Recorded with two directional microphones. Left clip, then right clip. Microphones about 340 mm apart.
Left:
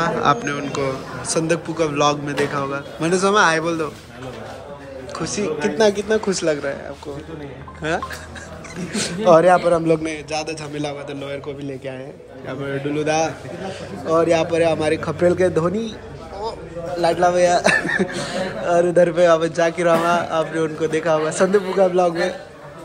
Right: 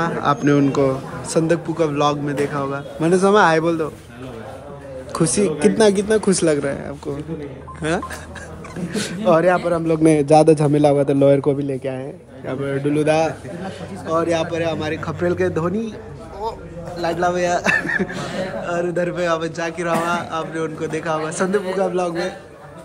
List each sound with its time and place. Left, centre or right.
0.0 s a man's voice: centre
5.1 s a man's voice: centre
8.9 s a man's voice: centre
17.0 s a man's voice: centre